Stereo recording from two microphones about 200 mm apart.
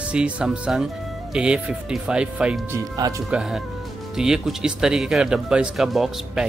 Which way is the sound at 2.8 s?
15° right (ahead or behind).